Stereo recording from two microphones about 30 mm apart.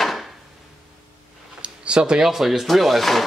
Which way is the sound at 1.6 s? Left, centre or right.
Right.